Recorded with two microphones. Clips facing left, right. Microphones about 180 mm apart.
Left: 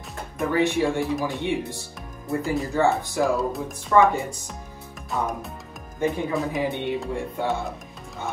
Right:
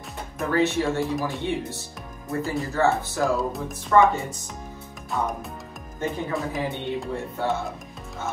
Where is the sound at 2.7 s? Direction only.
15° left (ahead or behind).